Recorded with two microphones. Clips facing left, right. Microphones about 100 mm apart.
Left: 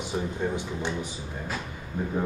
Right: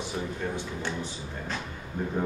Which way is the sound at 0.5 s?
15° left (ahead or behind).